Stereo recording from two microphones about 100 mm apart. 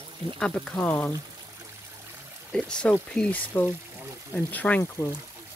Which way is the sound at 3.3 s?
20° left (ahead or behind).